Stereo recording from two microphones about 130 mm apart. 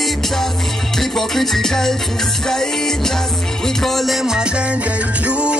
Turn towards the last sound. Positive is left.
turn(degrees=-5)  # may be behind; listen again after turning